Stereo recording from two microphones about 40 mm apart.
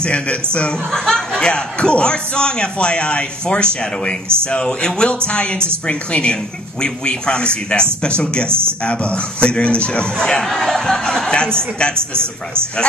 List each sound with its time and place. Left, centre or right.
0.0 s a man's voice: left
0.9 s a man's voice: centre
8.5 s speech: right
8.8 s a man's voice: left
10.1 s speech: centre
10.4 s speech: centre
11.2 s a man's voice: left